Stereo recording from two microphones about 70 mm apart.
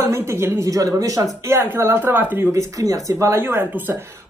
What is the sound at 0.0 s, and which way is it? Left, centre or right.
A woman's voice, right.